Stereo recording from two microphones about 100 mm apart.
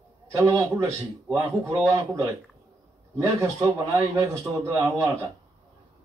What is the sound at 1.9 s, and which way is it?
A man's voice, 35° right (ahead or behind).